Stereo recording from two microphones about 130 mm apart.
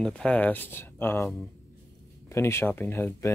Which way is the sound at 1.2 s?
Centre (ahead or behind).